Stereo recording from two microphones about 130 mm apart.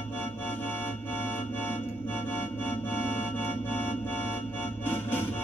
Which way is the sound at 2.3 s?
15° left (ahead or behind).